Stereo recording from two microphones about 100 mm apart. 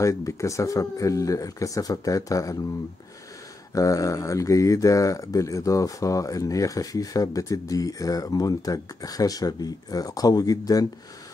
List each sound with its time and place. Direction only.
0.0 s speech: 30° left (ahead or behind)
3.7 s speech: 35° left (ahead or behind)